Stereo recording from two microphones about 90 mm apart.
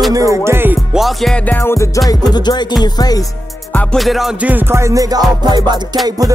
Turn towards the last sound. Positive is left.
turn(degrees=-40)  # may be behind; listen again after turning